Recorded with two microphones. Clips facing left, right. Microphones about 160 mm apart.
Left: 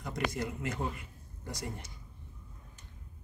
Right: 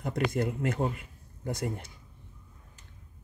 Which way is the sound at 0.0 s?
55° right (ahead or behind).